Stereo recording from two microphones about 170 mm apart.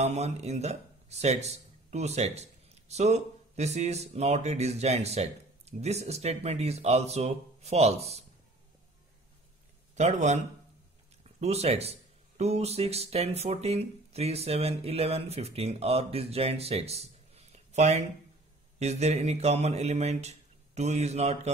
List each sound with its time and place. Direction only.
0.0 s speech: 40° right (ahead or behind)
9.9 s a man's voice: 45° right (ahead or behind)